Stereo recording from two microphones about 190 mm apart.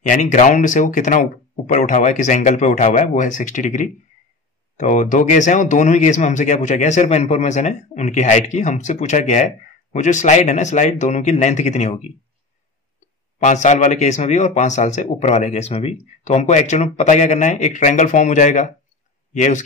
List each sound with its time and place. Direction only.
0.0 s speech: 40° left (ahead or behind)
13.4 s speech: 40° left (ahead or behind)